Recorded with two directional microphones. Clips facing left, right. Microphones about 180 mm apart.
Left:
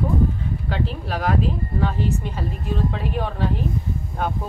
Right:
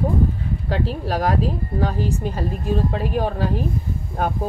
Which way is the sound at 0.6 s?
40° right (ahead or behind).